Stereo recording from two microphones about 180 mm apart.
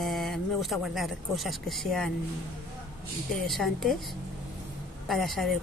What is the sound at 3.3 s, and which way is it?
Speech, centre (ahead or behind).